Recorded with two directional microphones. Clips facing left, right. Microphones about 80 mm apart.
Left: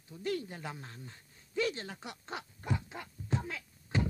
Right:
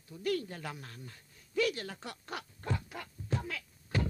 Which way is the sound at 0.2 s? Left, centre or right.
Left.